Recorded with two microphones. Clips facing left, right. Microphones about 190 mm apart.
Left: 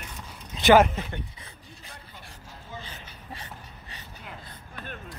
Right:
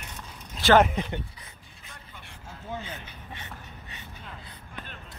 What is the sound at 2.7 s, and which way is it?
Vehicle, 60° right (ahead or behind).